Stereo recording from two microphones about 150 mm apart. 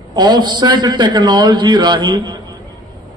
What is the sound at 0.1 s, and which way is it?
A man's voice, 30° right (ahead or behind).